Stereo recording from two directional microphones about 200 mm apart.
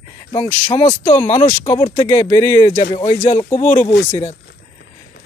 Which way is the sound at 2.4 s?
15° left (ahead or behind).